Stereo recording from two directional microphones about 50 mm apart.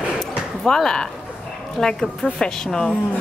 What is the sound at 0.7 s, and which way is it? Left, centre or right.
A woman's voice, centre.